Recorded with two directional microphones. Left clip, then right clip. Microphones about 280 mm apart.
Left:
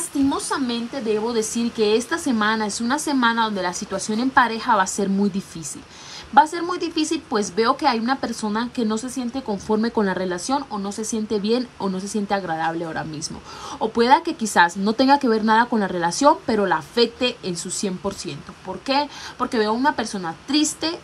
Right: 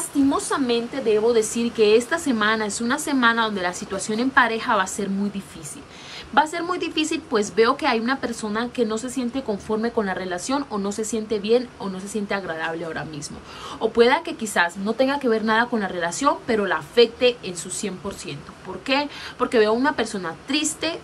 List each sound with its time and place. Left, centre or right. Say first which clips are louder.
0.3 s speech: right 2 dB; centre
6.3 s speech: left 4 dB; centre